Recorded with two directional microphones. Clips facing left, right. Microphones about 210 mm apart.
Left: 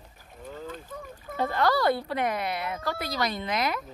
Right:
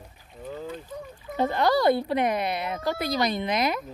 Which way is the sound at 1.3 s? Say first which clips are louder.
Right 3 dB; 20° right (ahead or behind).